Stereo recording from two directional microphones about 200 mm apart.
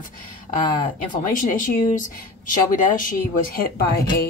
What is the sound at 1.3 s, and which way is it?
A woman's voice, 40° left (ahead or behind).